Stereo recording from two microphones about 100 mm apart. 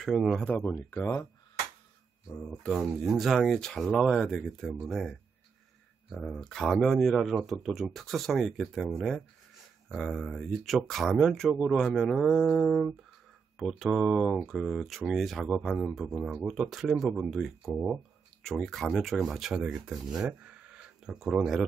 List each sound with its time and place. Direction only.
0.0 s speech: 5° right (ahead or behind)
0.7 s speech: 20° left (ahead or behind)
2.5 s speech: centre (ahead or behind)
6.1 s speech: centre (ahead or behind)